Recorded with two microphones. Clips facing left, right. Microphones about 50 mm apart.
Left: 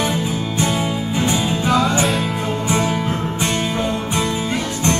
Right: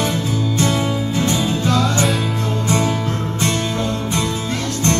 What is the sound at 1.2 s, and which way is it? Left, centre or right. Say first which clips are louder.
Music: left 1 dB; centre.